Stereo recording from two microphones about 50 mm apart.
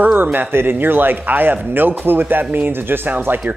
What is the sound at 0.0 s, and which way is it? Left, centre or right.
Speech, right.